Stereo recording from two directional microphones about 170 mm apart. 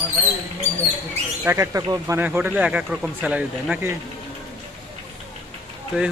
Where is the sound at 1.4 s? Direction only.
15° right (ahead or behind).